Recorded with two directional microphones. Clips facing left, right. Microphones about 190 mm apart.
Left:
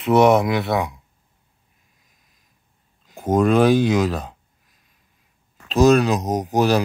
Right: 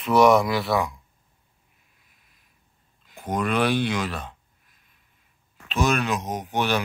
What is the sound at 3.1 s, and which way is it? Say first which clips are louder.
Speech: left 9 dB; 45° left (ahead or behind).